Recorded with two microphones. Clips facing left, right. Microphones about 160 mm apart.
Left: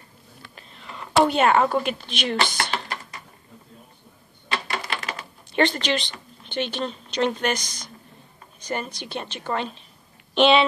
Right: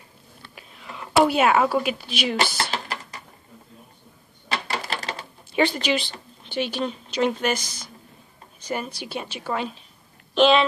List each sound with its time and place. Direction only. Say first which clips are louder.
0.6 s a woman's voice: right 1 dB; 5° right (ahead or behind)
2.7 s a sound: even; 35° right (ahead or behind)
4.5 s coin: even; 35° right (ahead or behind)
5.5 s a woman's voice: even; 5° right (ahead or behind)